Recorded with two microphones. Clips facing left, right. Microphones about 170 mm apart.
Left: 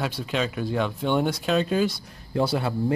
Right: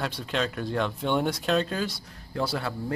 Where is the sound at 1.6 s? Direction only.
15° left (ahead or behind).